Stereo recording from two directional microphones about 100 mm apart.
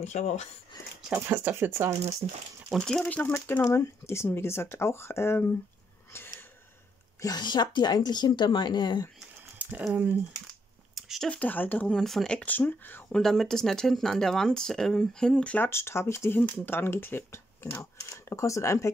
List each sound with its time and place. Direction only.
1.1 s speech: 20° right (ahead or behind)
2.2 s speech: 90° right
2.8 s speech: 5° left (ahead or behind)
3.2 s speech: 20° left (ahead or behind)
7.2 s speech: 40° left (ahead or behind)
9.6 s a sound: 15° right (ahead or behind)
11.0 s a sound: centre (ahead or behind)
11.2 s speech: 15° left (ahead or behind)
12.0 s speech: 5° left (ahead or behind)
13.1 s speech: 5° left (ahead or behind)
15.7 s speech: 25° left (ahead or behind)